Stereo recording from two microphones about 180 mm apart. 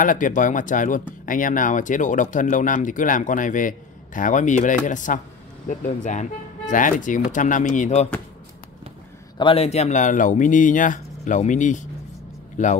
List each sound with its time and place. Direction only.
0.0 s speech: 45° left (ahead or behind)
9.4 s speech: 30° left (ahead or behind)